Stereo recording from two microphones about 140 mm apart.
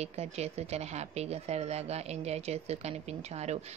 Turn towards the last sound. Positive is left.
turn(degrees=-50)  # may be behind; listen again after turning